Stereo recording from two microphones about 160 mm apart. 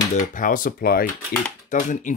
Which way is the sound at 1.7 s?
55° left (ahead or behind).